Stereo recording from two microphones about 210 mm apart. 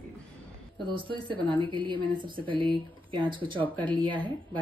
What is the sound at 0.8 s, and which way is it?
Speech, 25° right (ahead or behind).